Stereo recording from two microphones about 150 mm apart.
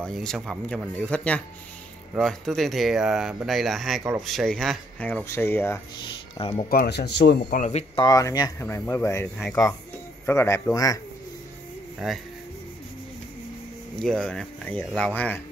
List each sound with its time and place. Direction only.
0.0 s speech: 5° left (ahead or behind)
6.3 s speech: 35° left (ahead or behind)
6.7 s speech: 85° left
7.5 s speech: 55° left (ahead or behind)
7.9 s speech: 25° left (ahead or behind)
12.0 s speech: 5° right (ahead or behind)
13.9 s speech: 5° left (ahead or behind)